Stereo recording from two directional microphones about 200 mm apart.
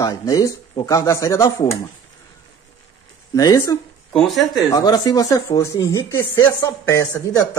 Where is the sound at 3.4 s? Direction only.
15° left (ahead or behind).